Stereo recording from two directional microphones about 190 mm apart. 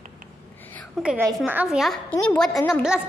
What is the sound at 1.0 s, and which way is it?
A woman's voice, 5° right (ahead or behind).